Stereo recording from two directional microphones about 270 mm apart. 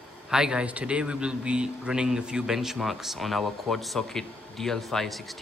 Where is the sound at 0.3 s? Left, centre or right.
Centre.